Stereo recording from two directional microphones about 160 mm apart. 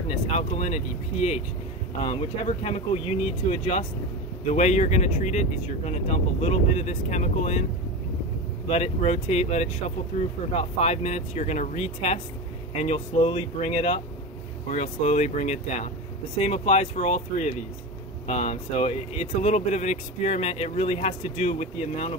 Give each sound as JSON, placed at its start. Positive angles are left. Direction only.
{"t": 0.1, "sound": "speech", "side_deg": 40}
{"t": 8.6, "sound": "speech", "side_deg": 40}